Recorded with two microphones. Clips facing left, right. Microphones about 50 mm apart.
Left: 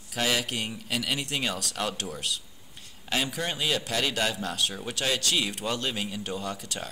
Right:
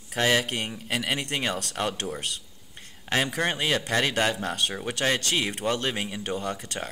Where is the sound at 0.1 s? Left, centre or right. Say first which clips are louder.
Right 4 dB; right.